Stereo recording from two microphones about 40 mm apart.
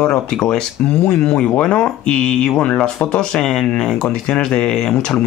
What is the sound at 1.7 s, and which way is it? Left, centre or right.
Speech, centre.